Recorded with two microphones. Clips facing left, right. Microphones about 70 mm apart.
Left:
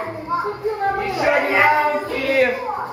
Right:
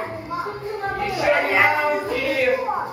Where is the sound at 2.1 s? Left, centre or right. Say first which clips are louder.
Left 4 dB; left.